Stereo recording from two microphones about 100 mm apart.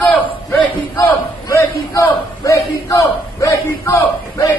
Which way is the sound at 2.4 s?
35° left (ahead or behind).